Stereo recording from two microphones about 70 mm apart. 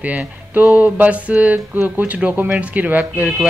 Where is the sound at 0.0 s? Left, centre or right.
Right.